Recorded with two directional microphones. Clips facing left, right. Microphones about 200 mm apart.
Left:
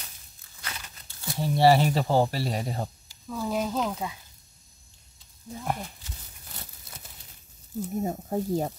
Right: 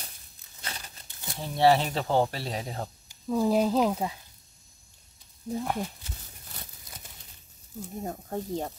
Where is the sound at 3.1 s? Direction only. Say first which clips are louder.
Right 7 dB; 15° right (ahead or behind).